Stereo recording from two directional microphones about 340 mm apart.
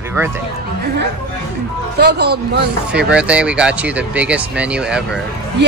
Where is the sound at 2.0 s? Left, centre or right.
Right.